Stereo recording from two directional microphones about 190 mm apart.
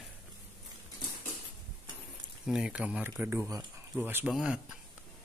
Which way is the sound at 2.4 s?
5° right (ahead or behind).